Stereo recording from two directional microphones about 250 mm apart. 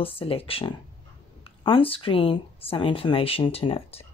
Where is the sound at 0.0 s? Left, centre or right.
Left.